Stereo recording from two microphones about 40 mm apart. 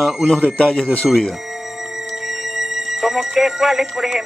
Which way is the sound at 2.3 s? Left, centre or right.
Centre.